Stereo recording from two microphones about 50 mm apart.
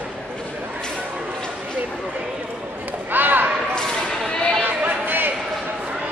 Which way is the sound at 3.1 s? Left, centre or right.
Right.